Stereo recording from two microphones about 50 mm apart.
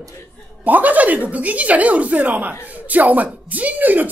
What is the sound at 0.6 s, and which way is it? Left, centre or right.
Speech, right.